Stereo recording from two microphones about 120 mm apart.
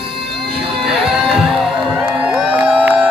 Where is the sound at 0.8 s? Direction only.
Centre (ahead or behind).